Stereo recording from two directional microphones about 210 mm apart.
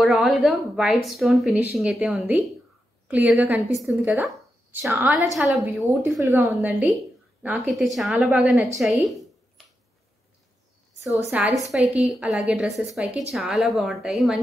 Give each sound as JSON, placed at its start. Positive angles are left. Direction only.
{"t": 0.0, "sound": "speech", "side_deg": 0}
{"t": 6.2, "sound": "a woman's voice", "side_deg": -15}
{"t": 6.5, "sound": "speech", "side_deg": -5}
{"t": 11.2, "sound": "speech", "side_deg": -5}